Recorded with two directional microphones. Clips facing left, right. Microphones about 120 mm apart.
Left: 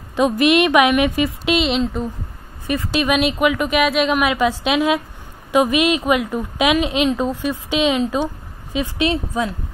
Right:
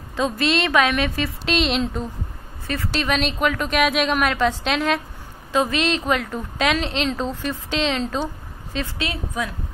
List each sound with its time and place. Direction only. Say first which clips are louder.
0.1 s speech: left 6 dB; 15° left (ahead or behind)
2.6 s a woman's voice: left 5 dB; 15° left (ahead or behind)